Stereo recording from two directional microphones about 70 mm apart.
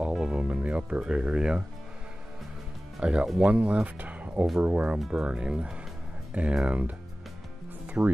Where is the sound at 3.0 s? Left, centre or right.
Centre.